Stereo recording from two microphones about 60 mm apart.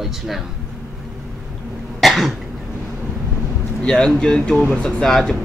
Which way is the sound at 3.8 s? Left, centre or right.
Centre.